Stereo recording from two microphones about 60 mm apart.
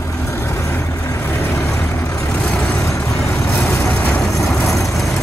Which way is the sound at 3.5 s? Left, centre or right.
Left.